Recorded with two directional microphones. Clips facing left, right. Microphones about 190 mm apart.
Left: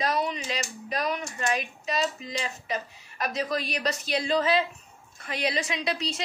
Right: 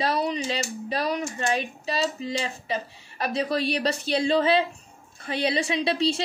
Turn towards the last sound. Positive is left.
turn(degrees=-30)  # may be behind; listen again after turning